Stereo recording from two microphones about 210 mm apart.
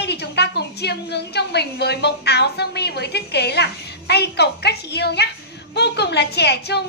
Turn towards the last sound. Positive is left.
turn(degrees=50)  # may be behind; listen again after turning